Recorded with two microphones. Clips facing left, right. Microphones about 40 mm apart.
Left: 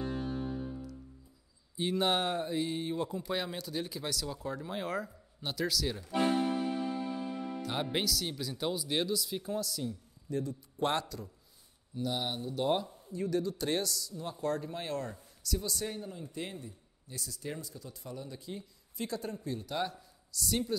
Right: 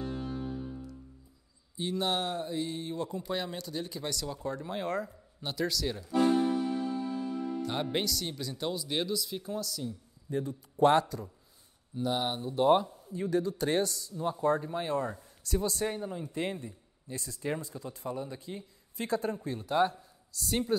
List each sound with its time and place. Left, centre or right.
0.2 s music: centre
1.8 s speech: centre
3.1 s speech: centre
6.0 s speech: left
6.5 s music: left
7.6 s speech: centre
10.3 s speech: right
11.9 s speech: centre
13.1 s speech: right
14.4 s speech: centre
15.4 s speech: right